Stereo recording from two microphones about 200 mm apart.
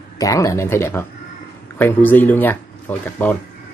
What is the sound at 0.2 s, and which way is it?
Speech, 15° left (ahead or behind).